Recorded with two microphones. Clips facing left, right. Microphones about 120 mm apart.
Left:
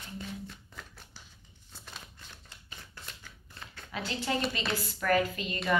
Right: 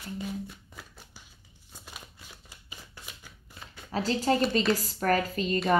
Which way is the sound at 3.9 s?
35° right (ahead or behind).